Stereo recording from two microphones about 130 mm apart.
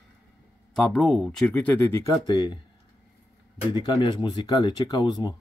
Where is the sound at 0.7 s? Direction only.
Centre (ahead or behind).